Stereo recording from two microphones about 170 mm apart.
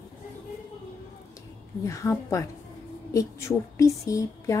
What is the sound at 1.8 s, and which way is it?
A woman's voice, 20° left (ahead or behind).